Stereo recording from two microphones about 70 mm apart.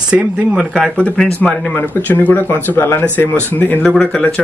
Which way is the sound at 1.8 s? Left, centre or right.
Left.